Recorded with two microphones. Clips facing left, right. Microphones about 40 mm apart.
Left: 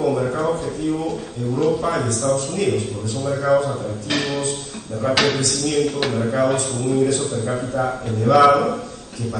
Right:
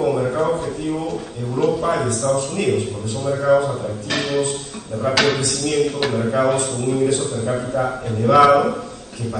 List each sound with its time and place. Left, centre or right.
0.0 s a sound: centre
1.6 s a man's voice: centre
6.3 s a man's voice: centre
6.6 s a man's voice: centre